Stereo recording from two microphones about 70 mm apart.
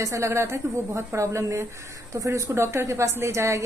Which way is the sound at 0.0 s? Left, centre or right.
Right.